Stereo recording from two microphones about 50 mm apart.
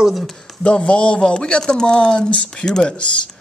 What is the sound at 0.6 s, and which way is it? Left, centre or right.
Speech, left.